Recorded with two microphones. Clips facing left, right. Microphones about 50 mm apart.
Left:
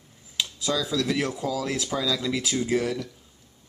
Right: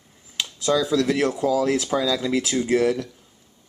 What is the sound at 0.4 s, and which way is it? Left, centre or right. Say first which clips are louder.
Speech: right 5 dB; centre.